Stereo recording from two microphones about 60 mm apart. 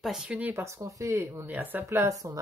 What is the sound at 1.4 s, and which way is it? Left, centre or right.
Speech, right.